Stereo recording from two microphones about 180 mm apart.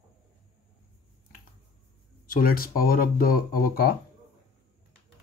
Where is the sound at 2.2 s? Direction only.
50° left (ahead or behind).